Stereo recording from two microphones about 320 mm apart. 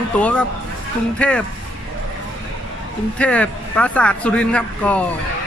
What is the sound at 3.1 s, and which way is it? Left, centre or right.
A man's voice, centre.